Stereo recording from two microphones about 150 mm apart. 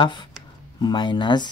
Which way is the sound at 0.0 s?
30° left (ahead or behind).